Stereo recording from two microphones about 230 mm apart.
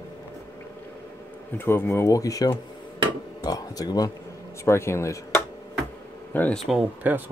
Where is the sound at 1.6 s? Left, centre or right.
Centre.